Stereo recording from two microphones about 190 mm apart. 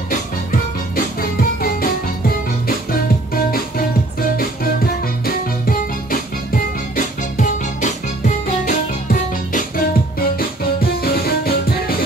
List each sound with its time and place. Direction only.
5.2 s music: 50° left (ahead or behind)